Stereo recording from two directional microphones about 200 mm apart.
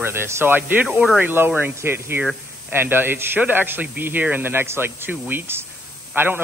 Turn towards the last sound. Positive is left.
turn(degrees=-10)  # may be behind; listen again after turning